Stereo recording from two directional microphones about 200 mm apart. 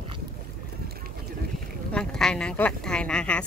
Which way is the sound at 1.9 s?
5° left (ahead or behind).